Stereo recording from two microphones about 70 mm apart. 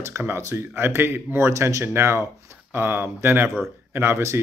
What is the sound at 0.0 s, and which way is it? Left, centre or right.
Speech, right.